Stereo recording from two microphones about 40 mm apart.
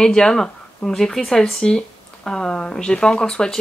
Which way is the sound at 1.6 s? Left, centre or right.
Left.